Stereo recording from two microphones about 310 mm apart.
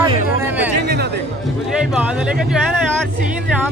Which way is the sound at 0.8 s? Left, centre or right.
Right.